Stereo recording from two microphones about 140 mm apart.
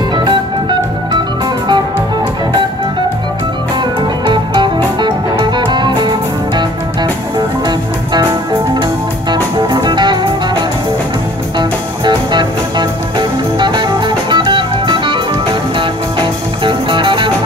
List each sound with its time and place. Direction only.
4.3 s music: 35° right (ahead or behind)
9.3 s music: 30° right (ahead or behind)
12.0 s music: 30° right (ahead or behind)
16.2 s music: 35° right (ahead or behind)